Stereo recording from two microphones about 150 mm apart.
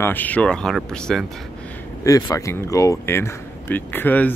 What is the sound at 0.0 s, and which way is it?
Speech, 10° left (ahead or behind).